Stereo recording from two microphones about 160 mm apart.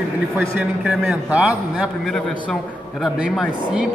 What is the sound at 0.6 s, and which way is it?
A man's voice, 10° right (ahead or behind).